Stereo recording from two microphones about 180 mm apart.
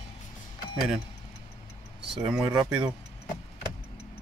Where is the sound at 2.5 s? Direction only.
25° right (ahead or behind).